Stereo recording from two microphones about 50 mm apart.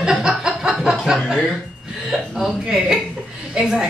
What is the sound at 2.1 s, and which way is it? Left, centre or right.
A woman's voice, centre.